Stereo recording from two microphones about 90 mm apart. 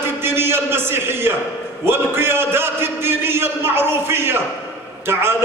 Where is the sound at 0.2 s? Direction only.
25° right (ahead or behind).